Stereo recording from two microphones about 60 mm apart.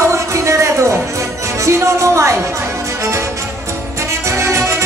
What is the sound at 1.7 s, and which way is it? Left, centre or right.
Music, right.